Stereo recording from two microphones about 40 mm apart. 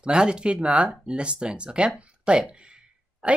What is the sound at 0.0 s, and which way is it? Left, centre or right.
Speech, right.